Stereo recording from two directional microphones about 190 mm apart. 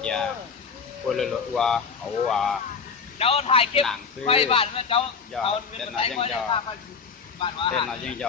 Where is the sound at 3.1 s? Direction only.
30° left (ahead or behind).